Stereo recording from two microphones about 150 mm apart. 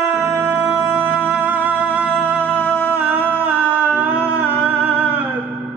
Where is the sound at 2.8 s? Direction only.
15° right (ahead or behind).